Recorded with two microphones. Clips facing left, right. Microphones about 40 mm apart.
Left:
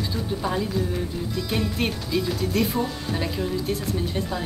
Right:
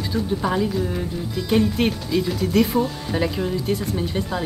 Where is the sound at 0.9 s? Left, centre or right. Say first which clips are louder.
Right 1 dB; centre.